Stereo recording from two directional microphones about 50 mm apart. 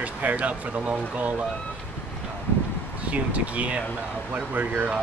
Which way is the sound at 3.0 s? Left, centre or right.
Right.